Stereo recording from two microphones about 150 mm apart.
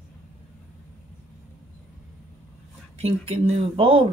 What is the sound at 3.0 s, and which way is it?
Speech, 40° right (ahead or behind).